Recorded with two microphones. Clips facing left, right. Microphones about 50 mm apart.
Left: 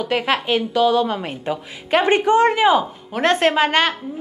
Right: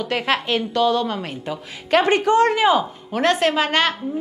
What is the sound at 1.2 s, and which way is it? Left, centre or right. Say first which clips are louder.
A woman's voice: left 3 dB; left.